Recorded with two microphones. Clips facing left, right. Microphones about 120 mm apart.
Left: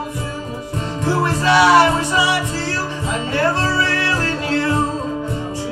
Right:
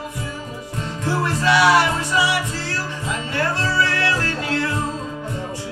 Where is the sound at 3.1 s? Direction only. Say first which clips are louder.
Left 5 dB; 25° left (ahead or behind).